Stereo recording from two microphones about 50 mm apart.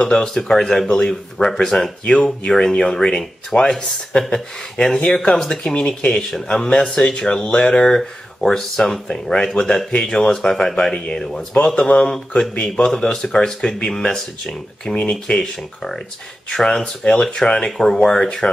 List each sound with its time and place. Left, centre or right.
0.0 s speech: centre
15.0 s speech: centre